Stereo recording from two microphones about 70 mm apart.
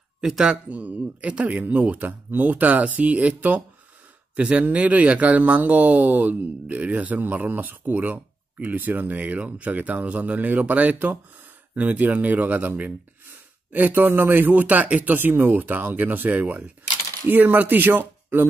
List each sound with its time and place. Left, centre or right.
0.2 s speech: centre
0.7 s speech: right